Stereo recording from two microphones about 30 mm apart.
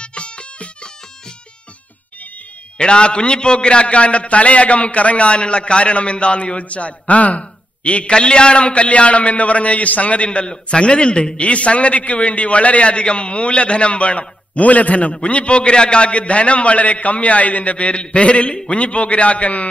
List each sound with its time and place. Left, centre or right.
0.0 s music: left
2.8 s a man's voice: left
8.1 s a man's voice: left
10.4 s a man's voice: left
15.2 s a man's voice: left